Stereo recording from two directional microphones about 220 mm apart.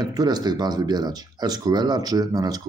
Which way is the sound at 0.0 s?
15° right (ahead or behind).